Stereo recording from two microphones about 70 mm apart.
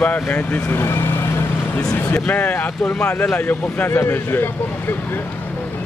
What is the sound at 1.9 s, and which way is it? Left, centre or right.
Vehicle, left.